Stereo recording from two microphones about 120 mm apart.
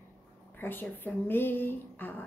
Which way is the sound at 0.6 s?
15° left (ahead or behind).